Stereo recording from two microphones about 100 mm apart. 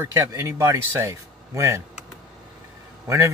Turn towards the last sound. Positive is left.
turn(degrees=-30)  # may be behind; listen again after turning